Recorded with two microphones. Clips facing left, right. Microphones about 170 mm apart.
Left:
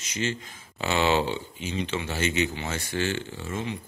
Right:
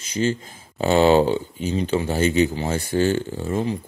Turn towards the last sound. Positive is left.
turn(degrees=-35)  # may be behind; listen again after turning